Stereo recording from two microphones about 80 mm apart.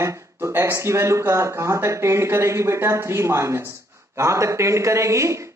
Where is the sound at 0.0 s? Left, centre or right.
Right.